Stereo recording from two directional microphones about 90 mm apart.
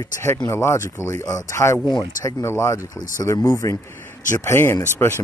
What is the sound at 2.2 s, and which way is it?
Speech, 35° left (ahead or behind).